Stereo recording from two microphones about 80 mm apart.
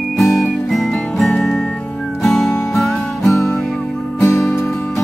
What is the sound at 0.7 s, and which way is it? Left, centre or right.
Music, centre.